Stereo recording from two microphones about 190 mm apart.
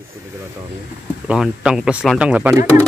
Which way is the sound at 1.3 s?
5° right (ahead or behind).